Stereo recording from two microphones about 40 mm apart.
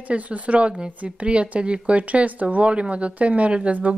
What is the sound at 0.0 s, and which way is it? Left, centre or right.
A woman's voice, right.